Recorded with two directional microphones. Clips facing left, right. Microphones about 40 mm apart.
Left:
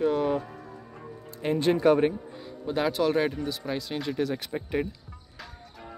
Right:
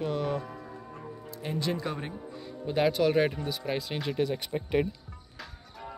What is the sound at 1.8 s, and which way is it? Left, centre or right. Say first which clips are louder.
Speech: left 14 dB; left.